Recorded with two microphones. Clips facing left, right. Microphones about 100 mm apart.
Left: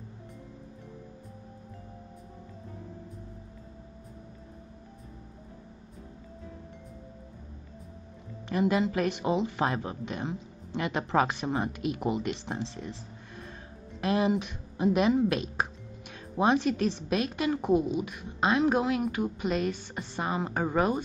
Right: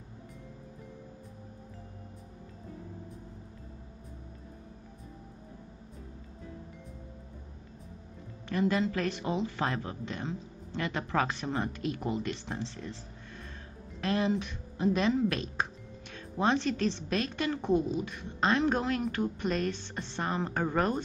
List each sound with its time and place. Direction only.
8.5 s speech: 15° left (ahead or behind)
14.0 s speech: 15° left (ahead or behind)